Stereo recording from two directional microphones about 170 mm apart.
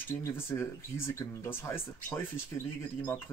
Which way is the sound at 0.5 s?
15° left (ahead or behind).